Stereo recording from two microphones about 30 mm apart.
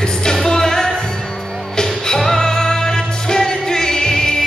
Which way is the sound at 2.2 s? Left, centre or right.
Centre.